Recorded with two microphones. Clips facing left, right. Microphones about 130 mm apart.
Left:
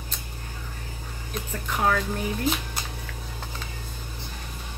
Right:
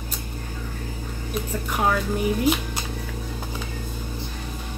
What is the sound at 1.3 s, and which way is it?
Speech, 10° right (ahead or behind).